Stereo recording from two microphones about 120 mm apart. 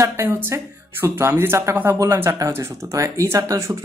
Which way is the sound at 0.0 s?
25° right (ahead or behind).